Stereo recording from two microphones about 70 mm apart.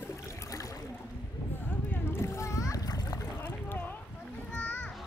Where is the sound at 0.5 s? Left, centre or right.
Left.